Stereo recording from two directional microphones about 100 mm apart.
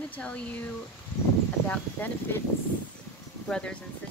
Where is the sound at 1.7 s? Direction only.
20° left (ahead or behind).